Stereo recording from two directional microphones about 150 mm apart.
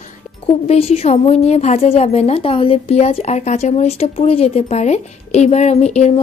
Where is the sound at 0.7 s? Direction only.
40° left (ahead or behind).